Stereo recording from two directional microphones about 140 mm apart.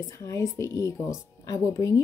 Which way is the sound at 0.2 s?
20° left (ahead or behind).